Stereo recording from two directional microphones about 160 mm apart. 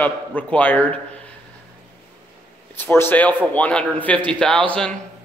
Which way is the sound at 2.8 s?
15° left (ahead or behind).